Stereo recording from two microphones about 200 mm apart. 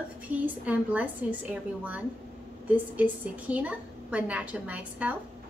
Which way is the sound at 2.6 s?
10° right (ahead or behind).